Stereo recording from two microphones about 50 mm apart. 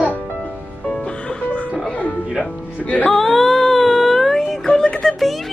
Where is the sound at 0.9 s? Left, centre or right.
Centre.